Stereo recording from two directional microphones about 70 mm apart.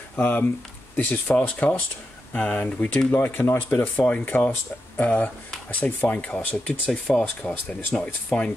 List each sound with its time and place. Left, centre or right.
0.1 s speech: left
6.9 s speech: centre
7.4 s speech: centre